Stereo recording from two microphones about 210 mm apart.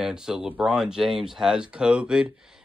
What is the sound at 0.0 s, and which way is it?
Speech, 5° right (ahead or behind).